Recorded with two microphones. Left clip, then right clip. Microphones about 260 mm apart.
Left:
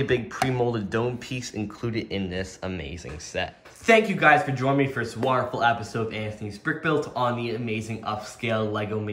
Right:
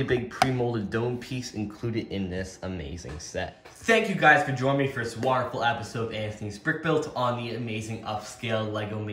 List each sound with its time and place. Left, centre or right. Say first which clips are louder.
0.0 s speech: even; centre
3.8 s speech: left 2 dB; centre